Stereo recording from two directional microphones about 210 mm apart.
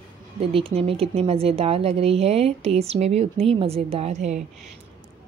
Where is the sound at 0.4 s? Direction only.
25° right (ahead or behind).